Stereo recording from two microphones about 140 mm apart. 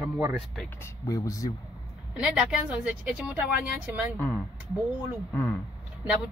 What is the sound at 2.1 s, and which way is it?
Speech, 5° right (ahead or behind).